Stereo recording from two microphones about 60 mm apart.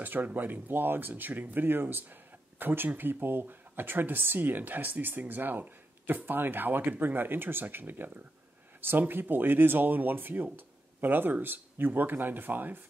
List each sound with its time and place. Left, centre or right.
0.0 s speech: right